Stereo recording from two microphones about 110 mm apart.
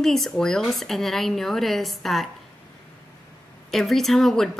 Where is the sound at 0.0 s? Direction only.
5° left (ahead or behind).